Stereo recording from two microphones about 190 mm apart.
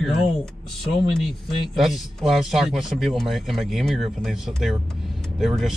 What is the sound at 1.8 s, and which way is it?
Speech, centre (ahead or behind).